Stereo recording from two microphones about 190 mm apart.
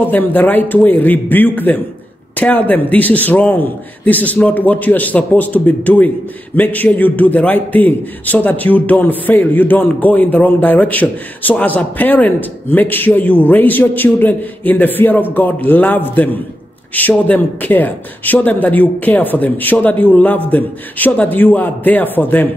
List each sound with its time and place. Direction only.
0.1 s a man's voice: 10° left (ahead or behind)